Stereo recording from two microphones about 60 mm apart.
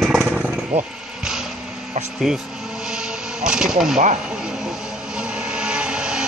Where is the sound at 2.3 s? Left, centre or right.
Centre.